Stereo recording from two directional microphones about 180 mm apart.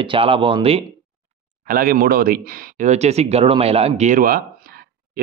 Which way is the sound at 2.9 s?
35° right (ahead or behind).